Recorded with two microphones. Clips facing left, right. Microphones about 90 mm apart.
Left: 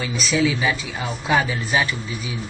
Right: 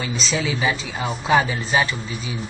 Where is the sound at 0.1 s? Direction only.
30° right (ahead or behind).